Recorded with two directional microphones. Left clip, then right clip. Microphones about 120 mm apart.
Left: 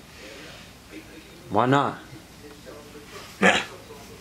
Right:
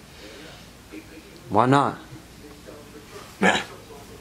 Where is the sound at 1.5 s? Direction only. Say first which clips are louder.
Right 2 dB; 15° right (ahead or behind).